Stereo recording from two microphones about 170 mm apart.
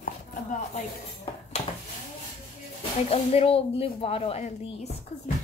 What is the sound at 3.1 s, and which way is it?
A woman's voice, 35° left (ahead or behind).